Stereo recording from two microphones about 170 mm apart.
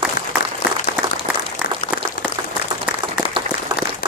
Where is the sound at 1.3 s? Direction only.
5° right (ahead or behind).